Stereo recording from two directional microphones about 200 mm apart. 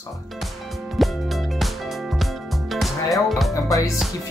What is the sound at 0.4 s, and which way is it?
Music, centre (ahead or behind).